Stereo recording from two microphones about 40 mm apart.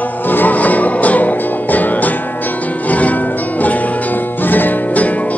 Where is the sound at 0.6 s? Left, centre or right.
Left.